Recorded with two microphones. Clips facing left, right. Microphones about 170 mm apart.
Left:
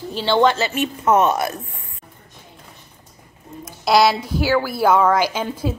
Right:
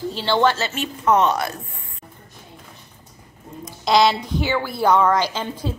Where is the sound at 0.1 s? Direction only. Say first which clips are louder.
Left 3 dB; 15° left (ahead or behind).